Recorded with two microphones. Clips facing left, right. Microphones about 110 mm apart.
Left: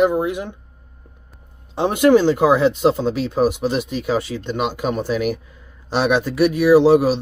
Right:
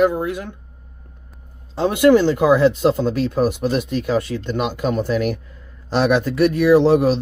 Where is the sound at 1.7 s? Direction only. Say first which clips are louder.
Even; 20° left (ahead or behind).